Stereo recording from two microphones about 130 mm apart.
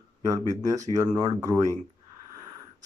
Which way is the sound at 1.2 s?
25° right (ahead or behind).